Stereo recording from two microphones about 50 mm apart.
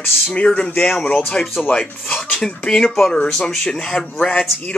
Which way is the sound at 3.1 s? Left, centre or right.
Centre.